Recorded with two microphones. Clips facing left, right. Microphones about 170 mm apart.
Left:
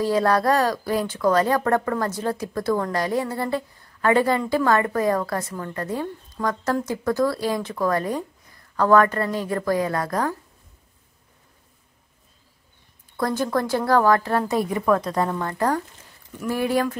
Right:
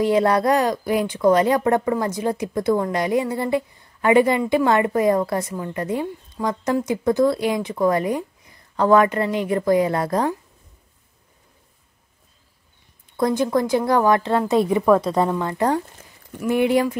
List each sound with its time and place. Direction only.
0.0 s a woman's voice: 20° right (ahead or behind)
13.1 s a woman's voice: 20° right (ahead or behind)
14.7 s a woman's voice: 10° right (ahead or behind)
15.0 s a woman's voice: 25° right (ahead or behind)
15.2 s a woman's voice: 15° right (ahead or behind)